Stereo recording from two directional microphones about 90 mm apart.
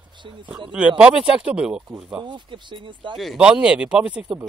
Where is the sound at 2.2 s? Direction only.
60° right (ahead or behind).